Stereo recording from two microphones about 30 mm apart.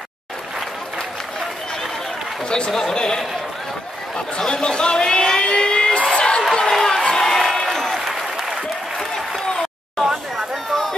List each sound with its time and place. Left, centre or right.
2.7 s speech: centre
4.5 s a sound: left
6.7 s crowd: centre
7.0 s crowd: left
7.2 s a sound: centre
7.6 s applause: centre
8.1 s applause: centre
8.9 s applause: centre
10.0 s chatter: centre